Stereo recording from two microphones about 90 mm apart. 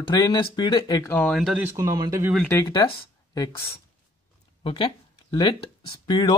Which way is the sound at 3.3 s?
40° left (ahead or behind).